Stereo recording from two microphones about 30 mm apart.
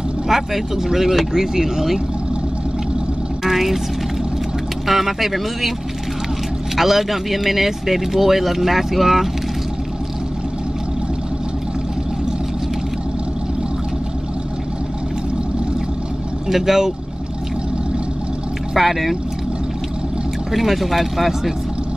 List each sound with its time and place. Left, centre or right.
0.3 s vehicle: centre
0.8 s speech: centre
3.4 s speech: centre
4.8 s speech: centre
6.8 s speech: centre
16.4 s speech: centre
18.8 s speech: centre
20.5 s speech: centre